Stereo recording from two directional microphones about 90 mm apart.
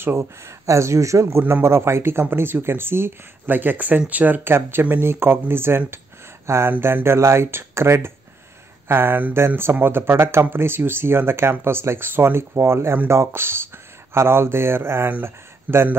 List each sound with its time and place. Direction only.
0.0 s speech: 30° right (ahead or behind)